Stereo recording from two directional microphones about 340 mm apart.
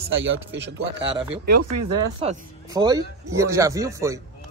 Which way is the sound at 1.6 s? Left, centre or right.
Right.